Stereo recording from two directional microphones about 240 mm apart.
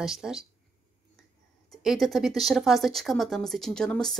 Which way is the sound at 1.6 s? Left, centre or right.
Centre.